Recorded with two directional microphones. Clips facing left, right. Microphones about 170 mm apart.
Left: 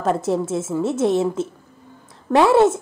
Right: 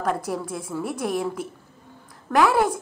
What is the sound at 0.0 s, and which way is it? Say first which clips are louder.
A woman's voice: left 6 dB; 25° left (ahead or behind).